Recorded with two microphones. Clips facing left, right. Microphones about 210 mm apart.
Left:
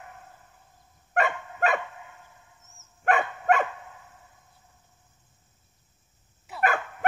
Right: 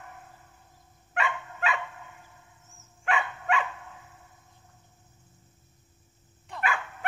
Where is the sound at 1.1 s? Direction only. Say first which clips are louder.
Left 5 dB; 45° left (ahead or behind).